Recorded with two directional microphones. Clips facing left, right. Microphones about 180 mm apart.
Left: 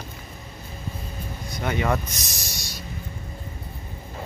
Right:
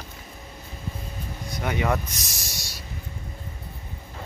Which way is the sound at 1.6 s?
10° right (ahead or behind).